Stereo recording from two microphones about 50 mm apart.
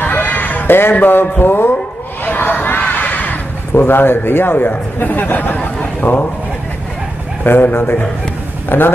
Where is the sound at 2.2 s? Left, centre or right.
Left.